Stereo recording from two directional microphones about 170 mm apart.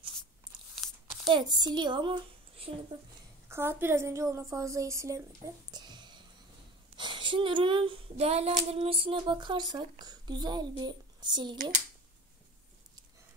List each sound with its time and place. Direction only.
0.8 s a sound: centre (ahead or behind)
1.2 s speech: 25° right (ahead or behind)
2.9 s child singing: 25° right (ahead or behind)
3.4 s a woman's voice: 15° right (ahead or behind)
5.7 s a sound: 25° right (ahead or behind)
7.0 s child singing: 30° right (ahead or behind)
10.8 s speech: 25° right (ahead or behind)